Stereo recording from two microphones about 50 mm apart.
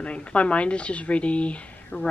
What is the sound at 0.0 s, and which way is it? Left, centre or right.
A woman's voice, left.